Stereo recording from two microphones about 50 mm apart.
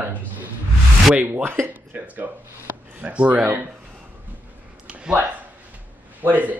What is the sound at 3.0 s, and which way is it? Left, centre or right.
Speech, right.